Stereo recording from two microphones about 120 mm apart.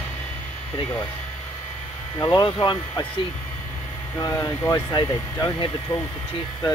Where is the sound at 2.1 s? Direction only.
30° left (ahead or behind).